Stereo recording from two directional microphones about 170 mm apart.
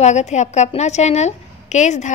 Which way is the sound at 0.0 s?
45° left (ahead or behind).